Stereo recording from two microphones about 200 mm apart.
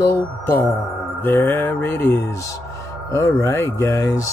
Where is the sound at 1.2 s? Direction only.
10° left (ahead or behind).